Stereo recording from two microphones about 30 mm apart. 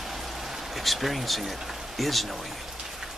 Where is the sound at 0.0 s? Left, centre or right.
Centre.